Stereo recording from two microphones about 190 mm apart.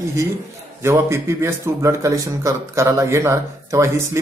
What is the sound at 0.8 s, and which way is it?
Speech, 15° right (ahead or behind).